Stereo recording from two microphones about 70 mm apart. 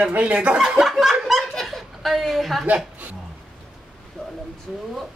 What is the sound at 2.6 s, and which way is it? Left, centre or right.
Speech, right.